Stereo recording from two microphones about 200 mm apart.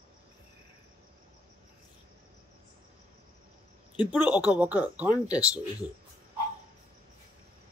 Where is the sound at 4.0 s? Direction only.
20° left (ahead or behind).